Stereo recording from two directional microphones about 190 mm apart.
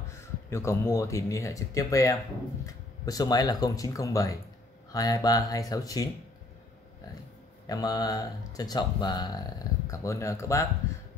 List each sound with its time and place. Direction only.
0.2 s speech: 15° left (ahead or behind)
7.6 s speech: 20° left (ahead or behind)